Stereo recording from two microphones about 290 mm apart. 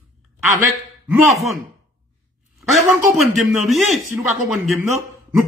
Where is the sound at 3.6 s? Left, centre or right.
Centre.